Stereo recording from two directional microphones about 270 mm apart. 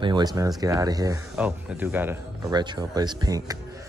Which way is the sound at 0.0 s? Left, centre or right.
Centre.